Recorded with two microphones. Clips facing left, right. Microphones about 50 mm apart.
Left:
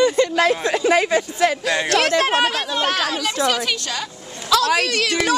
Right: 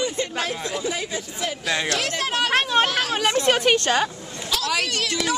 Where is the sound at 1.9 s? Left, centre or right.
Left.